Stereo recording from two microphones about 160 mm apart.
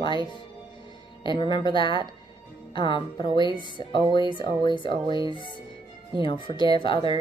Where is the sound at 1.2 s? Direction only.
30° left (ahead or behind).